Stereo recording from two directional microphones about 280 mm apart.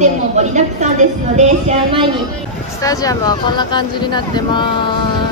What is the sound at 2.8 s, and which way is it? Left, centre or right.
Speech, centre.